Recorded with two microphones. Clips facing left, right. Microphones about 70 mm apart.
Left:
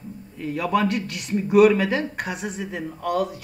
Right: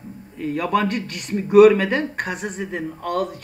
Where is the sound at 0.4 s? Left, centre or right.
Centre.